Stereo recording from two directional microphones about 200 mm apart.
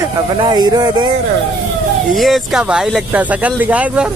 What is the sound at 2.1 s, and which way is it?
Speech, centre (ahead or behind).